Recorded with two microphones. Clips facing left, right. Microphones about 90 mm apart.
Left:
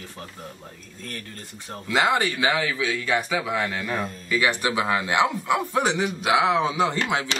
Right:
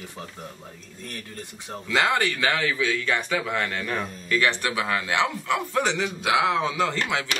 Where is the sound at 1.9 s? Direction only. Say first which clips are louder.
Left 1 dB; 10° left (ahead or behind).